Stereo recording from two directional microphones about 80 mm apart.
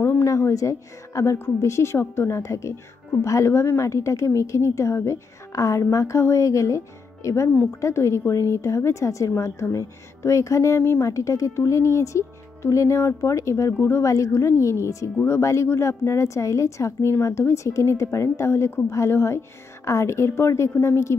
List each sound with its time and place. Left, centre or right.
0.0 s a woman's voice: left